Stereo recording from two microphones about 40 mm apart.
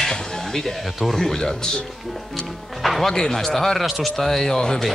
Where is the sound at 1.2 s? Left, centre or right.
Centre.